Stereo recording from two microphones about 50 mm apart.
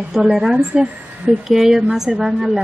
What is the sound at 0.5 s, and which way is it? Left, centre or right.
Speech, right.